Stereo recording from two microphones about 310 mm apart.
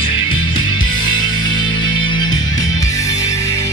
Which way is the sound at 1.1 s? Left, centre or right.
Centre.